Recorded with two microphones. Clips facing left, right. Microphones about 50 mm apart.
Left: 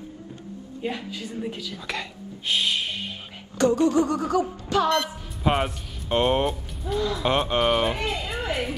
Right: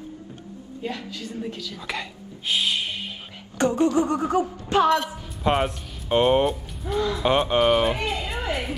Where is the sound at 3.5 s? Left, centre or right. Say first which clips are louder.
Left 1 dB; right.